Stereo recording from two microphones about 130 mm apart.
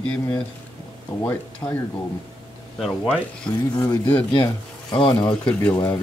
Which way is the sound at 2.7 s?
5° right (ahead or behind).